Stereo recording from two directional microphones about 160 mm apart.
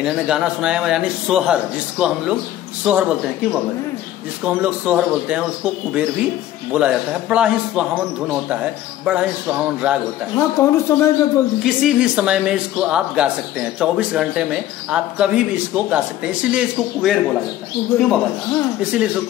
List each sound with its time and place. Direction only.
0.0 s speech: 5° right (ahead or behind)
4.5 s speech: 10° right (ahead or behind)
9.0 s speech: 5° right (ahead or behind)
10.3 s speech: 15° left (ahead or behind)
11.6 s speech: 5° right (ahead or behind)
18.8 s speech: 5° right (ahead or behind)